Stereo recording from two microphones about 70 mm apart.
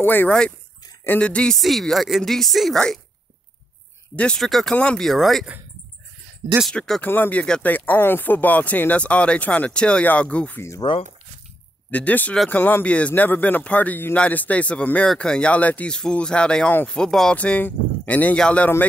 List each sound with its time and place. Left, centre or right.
0.0 s speech: left
1.2 s speech: centre
1.6 s speech: centre
4.4 s speech: centre
4.7 s speech: centre
5.0 s speech: centre
7.0 s speech: left
10.8 s speech: left
11.9 s speech: left
17.4 s speech: left